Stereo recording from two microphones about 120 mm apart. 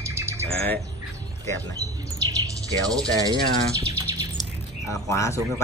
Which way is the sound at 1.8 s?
65° left (ahead or behind).